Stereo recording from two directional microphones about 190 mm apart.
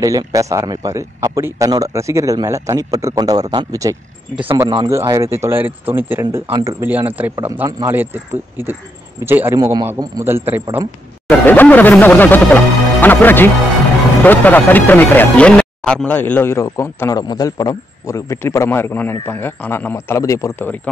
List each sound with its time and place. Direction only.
0.0 s speech: 20° right (ahead or behind)
11.2 s speech: 10° left (ahead or behind)